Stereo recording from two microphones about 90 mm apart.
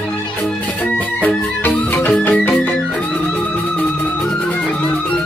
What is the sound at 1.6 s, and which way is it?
Music, 20° left (ahead or behind).